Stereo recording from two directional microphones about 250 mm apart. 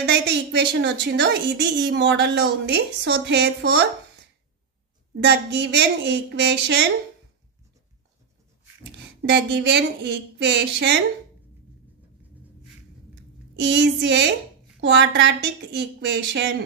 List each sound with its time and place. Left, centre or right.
0.0 s speech: right
5.2 s speech: right
9.3 s speech: right
13.6 s speech: right